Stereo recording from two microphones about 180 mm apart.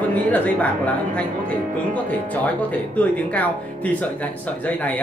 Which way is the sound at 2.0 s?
10° left (ahead or behind).